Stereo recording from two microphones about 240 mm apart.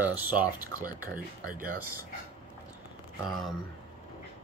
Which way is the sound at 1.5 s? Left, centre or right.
Right.